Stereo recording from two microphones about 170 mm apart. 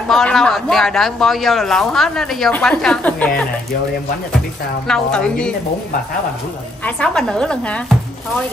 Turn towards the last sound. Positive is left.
turn(degrees=5)  # may be behind; listen again after turning